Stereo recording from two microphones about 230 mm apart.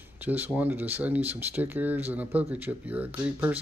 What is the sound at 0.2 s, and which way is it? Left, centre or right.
Speech, centre.